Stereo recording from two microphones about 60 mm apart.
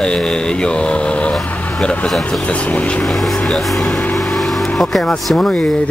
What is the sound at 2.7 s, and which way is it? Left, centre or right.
Speech, left.